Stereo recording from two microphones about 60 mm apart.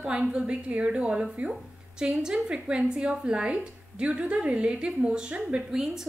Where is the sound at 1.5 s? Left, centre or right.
Centre.